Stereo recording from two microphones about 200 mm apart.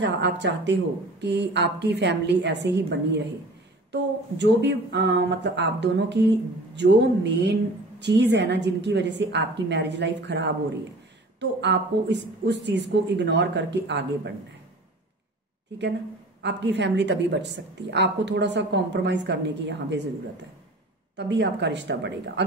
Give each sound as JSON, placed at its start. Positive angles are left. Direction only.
{"t": 0.0, "sound": "a woman's voice", "side_deg": -60}
{"t": 16.4, "sound": "a woman's voice", "side_deg": -60}
{"t": 21.2, "sound": "a woman's voice", "side_deg": -60}